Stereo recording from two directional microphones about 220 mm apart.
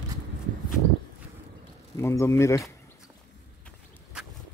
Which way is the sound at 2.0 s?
10° left (ahead or behind).